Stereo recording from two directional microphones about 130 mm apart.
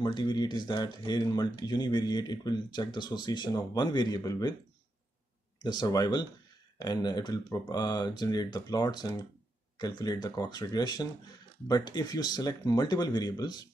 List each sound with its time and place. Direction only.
0.0 s speech: 35° left (ahead or behind)
5.6 s speech: 30° left (ahead or behind)